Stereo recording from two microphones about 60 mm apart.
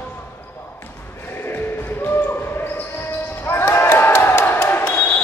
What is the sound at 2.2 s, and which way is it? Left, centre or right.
Basketball bounce, left.